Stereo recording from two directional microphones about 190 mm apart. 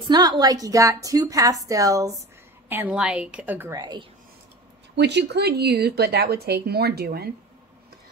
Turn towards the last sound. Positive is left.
turn(degrees=-55)  # may be behind; listen again after turning